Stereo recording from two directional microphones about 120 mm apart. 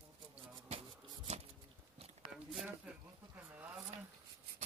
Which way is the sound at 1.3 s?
70° right (ahead or behind).